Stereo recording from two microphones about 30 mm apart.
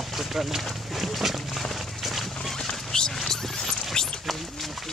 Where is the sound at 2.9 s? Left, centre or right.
Left.